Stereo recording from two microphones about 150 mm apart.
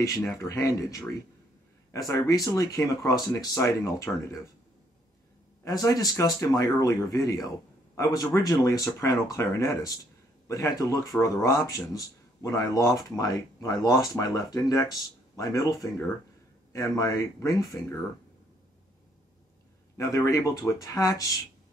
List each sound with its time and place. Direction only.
0.2 s speech: 20° left (ahead or behind)
5.6 s speech: 25° left (ahead or behind)
20.0 s speech: 20° left (ahead or behind)